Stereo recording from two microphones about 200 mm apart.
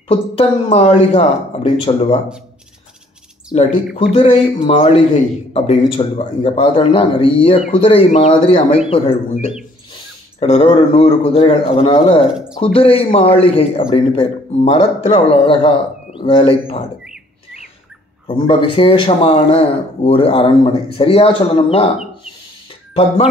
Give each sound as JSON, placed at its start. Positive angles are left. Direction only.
{"t": 0.1, "sound": "speech", "side_deg": 30}
{"t": 3.5, "sound": "speech", "side_deg": 35}
{"t": 10.4, "sound": "speech", "side_deg": 30}
{"t": 12.3, "sound": "speech", "side_deg": -5}
{"t": 12.7, "sound": "speech", "side_deg": 30}
{"t": 18.2, "sound": "speech", "side_deg": 25}